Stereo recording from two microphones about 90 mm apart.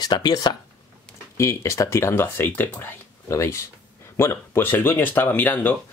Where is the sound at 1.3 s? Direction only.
35° left (ahead or behind).